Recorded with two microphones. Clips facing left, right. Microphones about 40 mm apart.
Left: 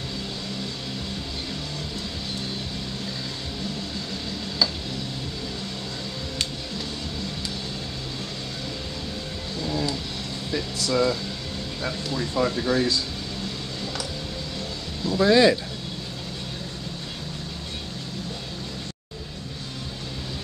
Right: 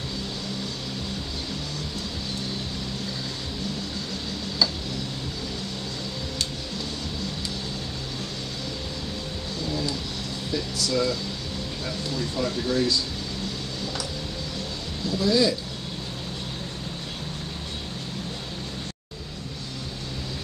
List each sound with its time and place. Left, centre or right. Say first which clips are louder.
9.7 s vehicle: left 2 dB; left
10.5 s speech: left 1 dB; left
15.0 s speech: left 5 dB; left